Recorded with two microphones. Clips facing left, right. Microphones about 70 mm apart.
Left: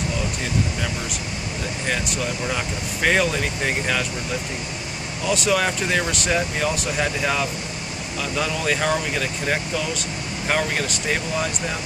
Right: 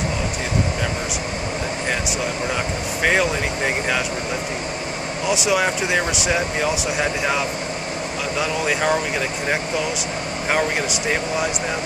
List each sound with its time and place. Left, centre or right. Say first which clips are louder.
3.0 s speech: right 1 dB; centre
5.3 s speech: right 1 dB; centre
10.5 s speech: right 2 dB; centre